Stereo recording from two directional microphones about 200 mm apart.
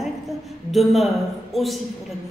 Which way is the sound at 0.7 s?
Centre (ahead or behind).